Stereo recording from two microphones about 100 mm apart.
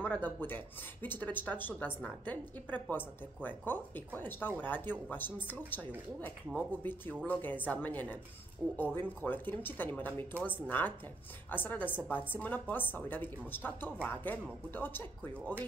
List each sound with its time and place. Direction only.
0.0 s a woman's voice: 15° left (ahead or behind)